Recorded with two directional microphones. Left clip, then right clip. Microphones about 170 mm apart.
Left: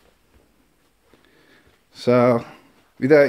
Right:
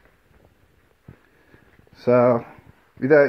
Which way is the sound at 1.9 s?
15° left (ahead or behind).